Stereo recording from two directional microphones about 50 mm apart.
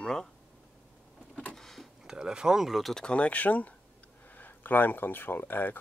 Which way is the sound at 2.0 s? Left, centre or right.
Centre.